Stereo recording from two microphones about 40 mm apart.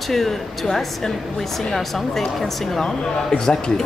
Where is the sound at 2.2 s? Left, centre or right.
Centre.